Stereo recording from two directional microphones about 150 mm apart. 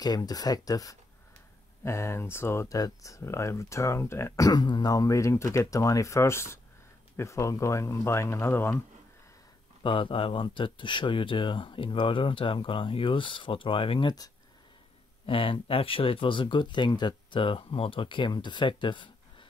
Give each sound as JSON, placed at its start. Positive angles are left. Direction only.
{"t": 0.0, "sound": "speech", "side_deg": 25}
{"t": 9.8, "sound": "speech", "side_deg": 35}